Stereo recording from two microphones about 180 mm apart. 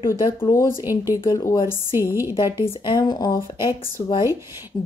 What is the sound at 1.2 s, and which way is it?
Speech, 25° left (ahead or behind).